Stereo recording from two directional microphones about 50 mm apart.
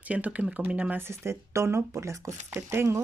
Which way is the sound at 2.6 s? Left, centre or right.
Right.